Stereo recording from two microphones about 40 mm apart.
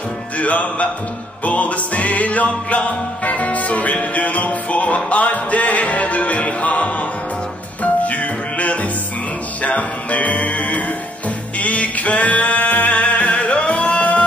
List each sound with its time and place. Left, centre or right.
0.4 s music: left
11.6 s singing: left